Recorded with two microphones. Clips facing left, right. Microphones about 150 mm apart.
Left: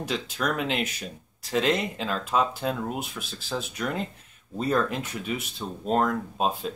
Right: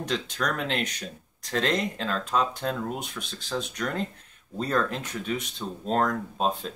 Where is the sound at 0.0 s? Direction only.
5° left (ahead or behind).